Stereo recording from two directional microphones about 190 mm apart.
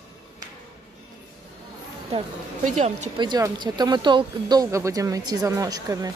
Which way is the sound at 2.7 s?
40° right (ahead or behind).